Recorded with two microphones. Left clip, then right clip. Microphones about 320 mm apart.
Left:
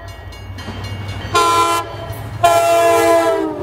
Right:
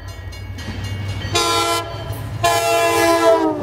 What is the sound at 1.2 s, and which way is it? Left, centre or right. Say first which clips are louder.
Train: left 5 dB; centre.